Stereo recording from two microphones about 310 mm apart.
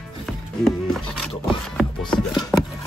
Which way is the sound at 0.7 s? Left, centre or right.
Centre.